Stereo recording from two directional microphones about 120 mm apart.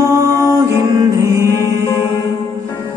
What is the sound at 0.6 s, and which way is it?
Music, 25° right (ahead or behind).